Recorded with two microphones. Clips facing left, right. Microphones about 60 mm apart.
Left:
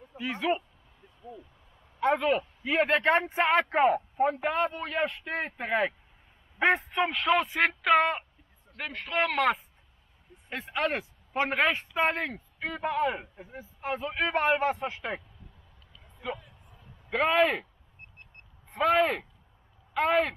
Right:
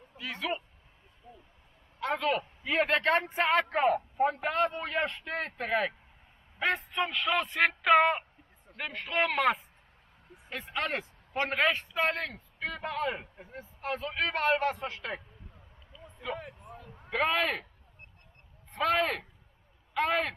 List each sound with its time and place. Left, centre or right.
0.1 s speech: left
2.0 s speech: centre
3.5 s speech: centre
6.6 s speech: left; by 9.6 s centre
10.6 s speech: centre
16.3 s a sound: right
17.1 s speech: centre
18.7 s speech: centre